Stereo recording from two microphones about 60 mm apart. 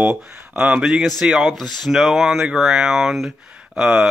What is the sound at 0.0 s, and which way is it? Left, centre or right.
Speech, right.